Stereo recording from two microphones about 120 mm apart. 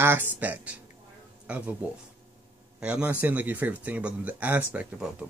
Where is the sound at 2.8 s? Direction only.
10° right (ahead or behind).